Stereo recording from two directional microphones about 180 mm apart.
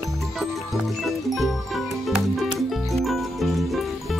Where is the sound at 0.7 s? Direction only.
Centre (ahead or behind).